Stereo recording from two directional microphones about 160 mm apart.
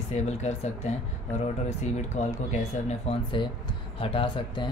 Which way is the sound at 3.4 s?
30° left (ahead or behind).